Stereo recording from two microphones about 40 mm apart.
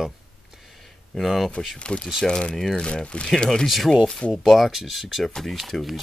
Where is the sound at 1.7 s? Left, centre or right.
Left.